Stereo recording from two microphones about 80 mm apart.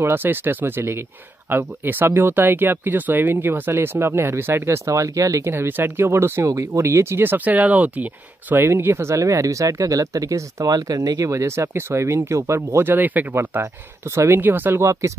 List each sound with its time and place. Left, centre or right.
0.0 s speech: right
5.5 s speech: right
14.9 s speech: right